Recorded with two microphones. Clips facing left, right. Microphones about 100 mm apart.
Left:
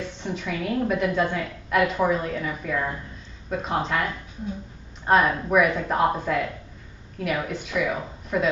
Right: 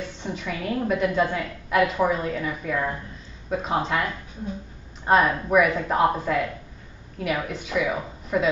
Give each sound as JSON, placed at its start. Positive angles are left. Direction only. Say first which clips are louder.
{"t": 0.0, "sound": "a woman's voice", "louder": "left 1 dB", "side_deg": 0}
{"t": 5.0, "sound": "a woman's voice", "louder": "even", "side_deg": 0}